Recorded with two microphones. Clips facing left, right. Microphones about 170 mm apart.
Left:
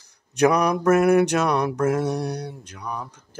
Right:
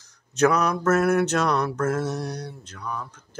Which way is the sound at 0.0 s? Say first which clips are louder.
Left 2 dB; 10° left (ahead or behind).